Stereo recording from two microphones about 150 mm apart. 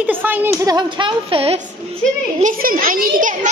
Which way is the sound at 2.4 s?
65° right (ahead or behind).